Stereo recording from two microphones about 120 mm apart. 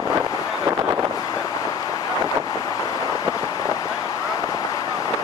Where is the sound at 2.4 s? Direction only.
30° left (ahead or behind).